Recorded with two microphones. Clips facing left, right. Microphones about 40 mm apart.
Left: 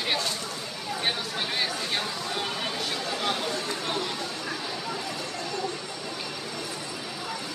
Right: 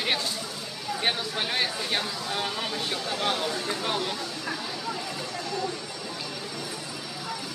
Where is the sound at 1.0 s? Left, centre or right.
Centre.